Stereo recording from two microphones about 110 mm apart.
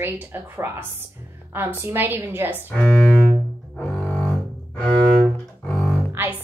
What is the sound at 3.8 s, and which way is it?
Cello, 5° left (ahead or behind).